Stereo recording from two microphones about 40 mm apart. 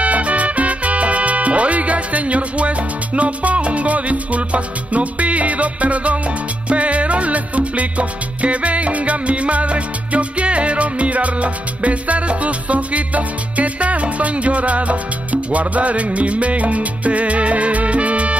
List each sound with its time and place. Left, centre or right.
0.0 s music: right